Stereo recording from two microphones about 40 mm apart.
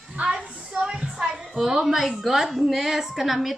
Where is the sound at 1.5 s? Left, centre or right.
Centre.